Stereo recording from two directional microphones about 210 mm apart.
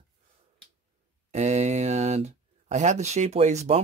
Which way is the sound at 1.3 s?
35° right (ahead or behind).